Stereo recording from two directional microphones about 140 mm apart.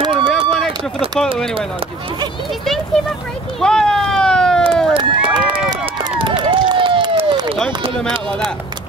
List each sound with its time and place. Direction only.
0.3 s run: 5° left (ahead or behind)
3.6 s run: 5° left (ahead or behind)
4.9 s run: 35° right (ahead or behind)